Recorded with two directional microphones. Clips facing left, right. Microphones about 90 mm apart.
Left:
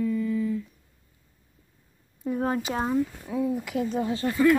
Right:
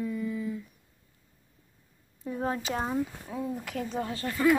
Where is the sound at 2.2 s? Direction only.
5° left (ahead or behind).